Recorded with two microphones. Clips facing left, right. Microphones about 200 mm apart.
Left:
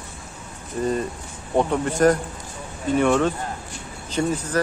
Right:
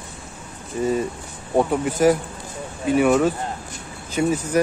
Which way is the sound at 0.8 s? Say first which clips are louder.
Right 2 dB; 5° right (ahead or behind).